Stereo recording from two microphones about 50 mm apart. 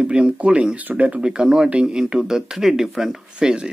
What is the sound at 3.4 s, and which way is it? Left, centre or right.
Speech, centre.